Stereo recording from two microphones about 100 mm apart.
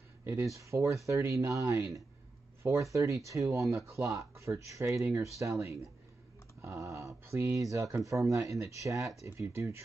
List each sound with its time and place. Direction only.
0.2 s speech: 25° right (ahead or behind)